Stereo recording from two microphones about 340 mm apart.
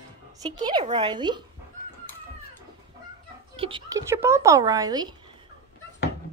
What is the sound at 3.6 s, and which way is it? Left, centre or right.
Speech, centre.